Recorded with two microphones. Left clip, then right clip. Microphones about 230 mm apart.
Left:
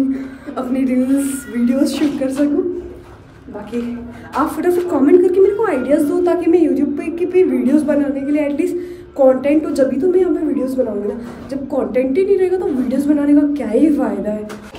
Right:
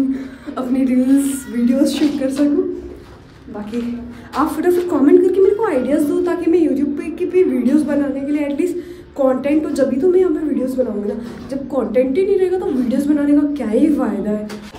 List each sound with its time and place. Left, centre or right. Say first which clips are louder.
0.1 s a woman's voice: left 1 dB; centre
4.3 s a woman's voice: even; centre